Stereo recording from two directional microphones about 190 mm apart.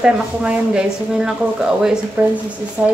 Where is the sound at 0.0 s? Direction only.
5° right (ahead or behind).